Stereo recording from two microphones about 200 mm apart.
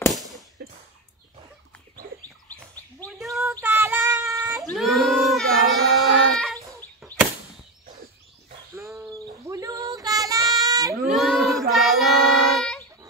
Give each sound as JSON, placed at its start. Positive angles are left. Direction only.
{"t": 0.1, "sound": "whip", "side_deg": 0}
{"t": 2.5, "sound": "bird", "side_deg": 5}
{"t": 3.6, "sound": "child singing", "side_deg": -10}
{"t": 4.6, "sound": "child singing", "side_deg": 0}
{"t": 8.7, "sound": "dog", "side_deg": -15}
{"t": 9.5, "sound": "child singing", "side_deg": -15}
{"t": 11.1, "sound": "child singing", "side_deg": 0}